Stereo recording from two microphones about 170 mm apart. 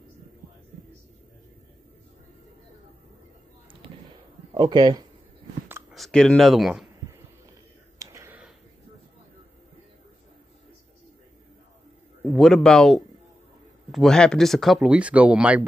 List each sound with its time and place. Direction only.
4.6 s speech: 25° right (ahead or behind)
5.9 s speech: 5° left (ahead or behind)
8.0 s a sound: 15° right (ahead or behind)
12.3 s a man's voice: centre (ahead or behind)